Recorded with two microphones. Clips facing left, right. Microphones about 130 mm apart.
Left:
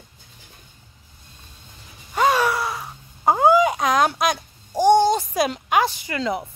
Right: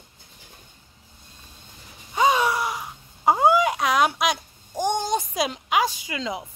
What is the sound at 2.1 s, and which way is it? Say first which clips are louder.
Speech: left 1 dB; 15° right (ahead or behind).